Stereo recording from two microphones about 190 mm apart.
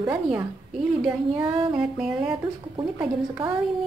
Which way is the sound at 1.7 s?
5° right (ahead or behind).